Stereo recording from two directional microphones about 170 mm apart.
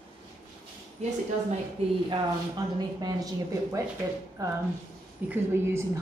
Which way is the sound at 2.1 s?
20° right (ahead or behind).